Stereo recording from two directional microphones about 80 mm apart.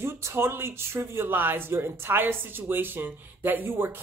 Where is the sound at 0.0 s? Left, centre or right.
Right.